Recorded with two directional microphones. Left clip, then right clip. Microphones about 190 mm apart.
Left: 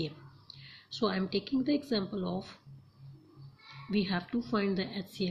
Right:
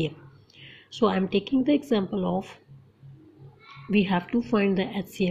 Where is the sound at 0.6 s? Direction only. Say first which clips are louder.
Right 8 dB; 15° right (ahead or behind).